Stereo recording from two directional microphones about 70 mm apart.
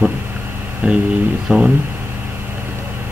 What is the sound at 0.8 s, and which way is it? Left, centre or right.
Speech, centre.